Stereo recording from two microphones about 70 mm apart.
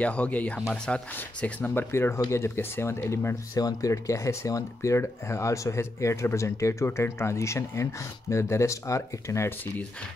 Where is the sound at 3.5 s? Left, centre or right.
Left.